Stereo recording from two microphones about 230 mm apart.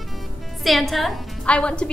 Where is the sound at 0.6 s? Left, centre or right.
Centre.